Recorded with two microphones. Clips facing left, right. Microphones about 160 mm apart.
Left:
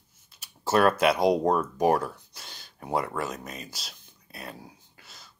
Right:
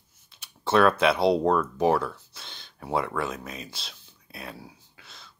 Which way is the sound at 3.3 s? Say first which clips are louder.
Right 1 dB; 40° left (ahead or behind).